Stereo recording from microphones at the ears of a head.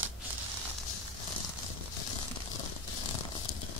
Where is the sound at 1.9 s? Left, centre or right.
Left.